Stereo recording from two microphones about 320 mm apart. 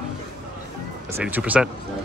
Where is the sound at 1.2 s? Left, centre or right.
Centre.